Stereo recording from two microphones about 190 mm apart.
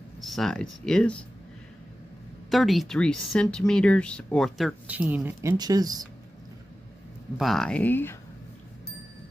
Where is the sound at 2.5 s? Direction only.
Centre (ahead or behind); by 6.0 s 20° right (ahead or behind).